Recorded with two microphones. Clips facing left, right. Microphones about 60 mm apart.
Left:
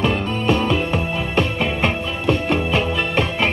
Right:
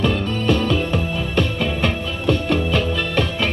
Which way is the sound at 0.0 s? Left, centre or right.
Left.